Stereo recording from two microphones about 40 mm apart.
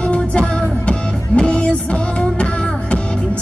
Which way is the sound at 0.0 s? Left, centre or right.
Left.